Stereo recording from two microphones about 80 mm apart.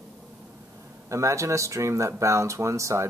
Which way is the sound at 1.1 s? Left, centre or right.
Right.